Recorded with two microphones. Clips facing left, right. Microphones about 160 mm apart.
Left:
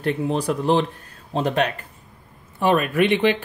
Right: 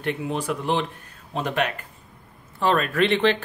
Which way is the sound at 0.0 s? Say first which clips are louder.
Left 4 dB; 35° left (ahead or behind).